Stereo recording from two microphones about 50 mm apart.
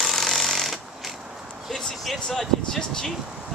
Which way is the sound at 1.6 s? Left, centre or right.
Centre.